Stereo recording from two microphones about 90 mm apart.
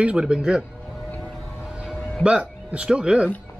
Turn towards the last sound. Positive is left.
turn(degrees=-10)  # may be behind; listen again after turning